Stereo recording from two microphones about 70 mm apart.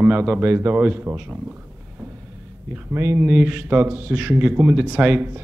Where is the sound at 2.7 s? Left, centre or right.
Right.